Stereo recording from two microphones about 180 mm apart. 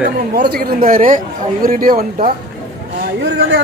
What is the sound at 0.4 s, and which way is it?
A man's voice, 55° right (ahead or behind).